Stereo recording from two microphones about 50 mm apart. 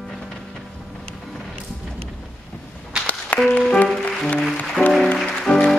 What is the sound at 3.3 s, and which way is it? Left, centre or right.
Music, left.